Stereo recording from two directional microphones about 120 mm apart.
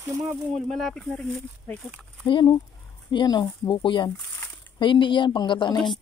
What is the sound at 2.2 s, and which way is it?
Speech, 40° left (ahead or behind).